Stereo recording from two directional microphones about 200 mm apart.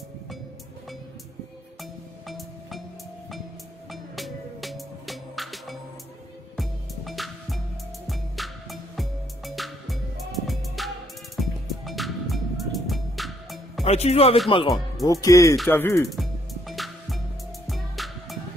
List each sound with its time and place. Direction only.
1.8 s music: centre (ahead or behind)
3.9 s music: centre (ahead or behind)
13.8 s music: 30° left (ahead or behind)
14.5 s speech: 25° left (ahead or behind)
15.5 s music: 5° left (ahead or behind)